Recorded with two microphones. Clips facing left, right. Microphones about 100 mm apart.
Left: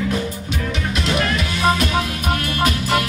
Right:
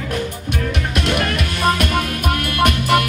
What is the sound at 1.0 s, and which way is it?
Music, 55° right (ahead or behind).